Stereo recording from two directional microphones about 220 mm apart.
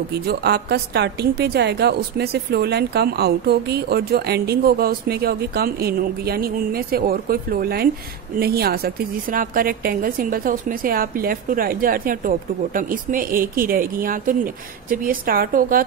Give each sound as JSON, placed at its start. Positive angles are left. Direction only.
{"t": 0.1, "sound": "a woman's voice", "side_deg": -50}